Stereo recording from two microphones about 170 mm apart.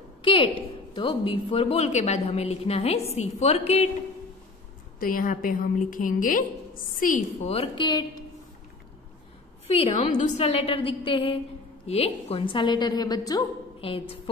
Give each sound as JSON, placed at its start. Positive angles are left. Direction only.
{"t": 0.2, "sound": "a sound", "side_deg": 30}
{"t": 0.9, "sound": "a woman's voice", "side_deg": 30}
{"t": 5.0, "sound": "a woman's voice", "side_deg": 55}
{"t": 7.4, "sound": "a woman's voice", "side_deg": 35}
{"t": 9.8, "sound": "a woman's voice", "side_deg": 35}
{"t": 13.7, "sound": "a woman's voice", "side_deg": 30}